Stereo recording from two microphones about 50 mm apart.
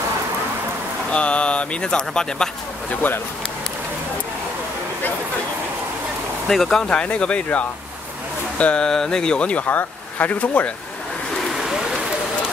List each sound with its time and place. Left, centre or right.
1.1 s speech: left
6.4 s speech: centre
6.8 s speech: centre
8.5 s speech: left
8.8 s speech: centre
9.7 s speech: left
11.5 s rain on surface: centre